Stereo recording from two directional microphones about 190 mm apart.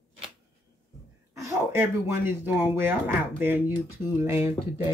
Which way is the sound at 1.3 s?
15° right (ahead or behind).